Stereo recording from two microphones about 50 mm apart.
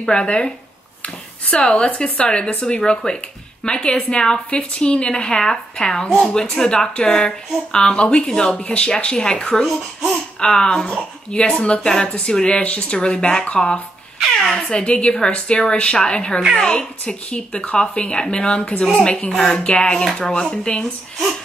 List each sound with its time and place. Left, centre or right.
0.0 s a woman's voice: centre
1.5 s a woman's voice: centre
9.1 s a woman's voice: centre
14.2 s speech: centre
14.7 s a woman's voice: centre